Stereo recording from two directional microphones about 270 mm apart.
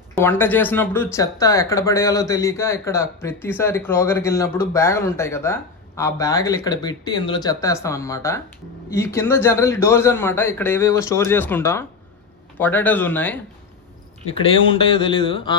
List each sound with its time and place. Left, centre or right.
0.1 s speech: centre
14.3 s speech: centre